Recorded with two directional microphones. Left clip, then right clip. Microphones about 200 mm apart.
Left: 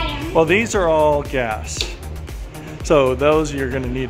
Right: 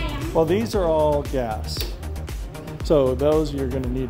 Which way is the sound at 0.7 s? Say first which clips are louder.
Left 4 dB; 20° left (ahead or behind).